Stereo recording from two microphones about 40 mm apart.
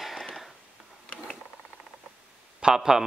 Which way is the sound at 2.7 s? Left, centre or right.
Centre.